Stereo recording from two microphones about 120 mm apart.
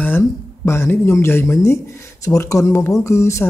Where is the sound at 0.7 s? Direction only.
20° left (ahead or behind).